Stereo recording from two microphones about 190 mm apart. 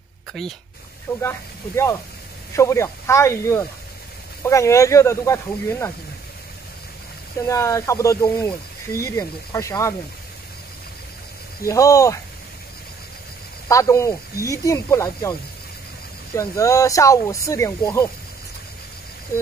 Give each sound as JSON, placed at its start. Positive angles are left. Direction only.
{"t": 0.3, "sound": "speech", "side_deg": 0}
{"t": 1.1, "sound": "speech", "side_deg": 15}
{"t": 2.5, "sound": "speech", "side_deg": 15}
{"t": 7.4, "sound": "speech", "side_deg": 15}
{"t": 11.6, "sound": "speech", "side_deg": 15}
{"t": 13.7, "sound": "speech", "side_deg": 15}
{"t": 16.3, "sound": "speech", "side_deg": 15}